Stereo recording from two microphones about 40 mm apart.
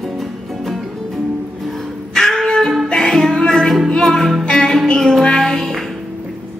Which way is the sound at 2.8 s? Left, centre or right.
Centre.